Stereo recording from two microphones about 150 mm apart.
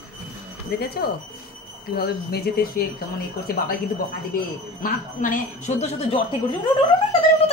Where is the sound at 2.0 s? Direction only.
90° left.